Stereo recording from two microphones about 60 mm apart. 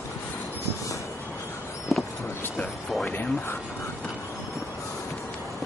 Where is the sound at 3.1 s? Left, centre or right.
Left.